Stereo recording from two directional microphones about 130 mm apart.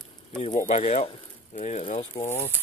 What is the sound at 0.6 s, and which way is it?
Speech, 60° left (ahead or behind).